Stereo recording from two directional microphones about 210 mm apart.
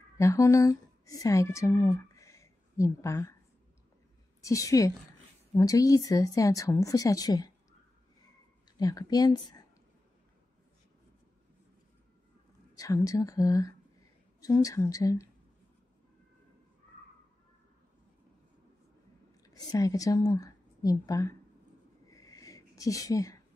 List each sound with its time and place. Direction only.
0.2 s a woman's voice: 15° left (ahead or behind)
4.4 s a woman's voice: 15° left (ahead or behind)
8.7 s speech: 20° left (ahead or behind)
12.7 s a woman's voice: 15° left (ahead or behind)
19.7 s speech: 15° left (ahead or behind)
22.1 s a sound: 15° left (ahead or behind)